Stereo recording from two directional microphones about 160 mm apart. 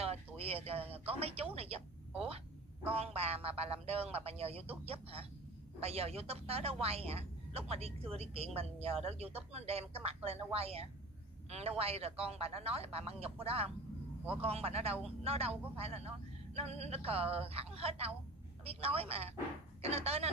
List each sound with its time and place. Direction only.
0.0 s a sound: 40° right (ahead or behind)
0.9 s a woman's voice: 40° right (ahead or behind)
2.9 s a woman's voice: 40° right (ahead or behind)